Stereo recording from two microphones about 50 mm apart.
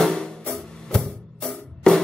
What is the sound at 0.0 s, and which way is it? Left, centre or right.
Music, centre.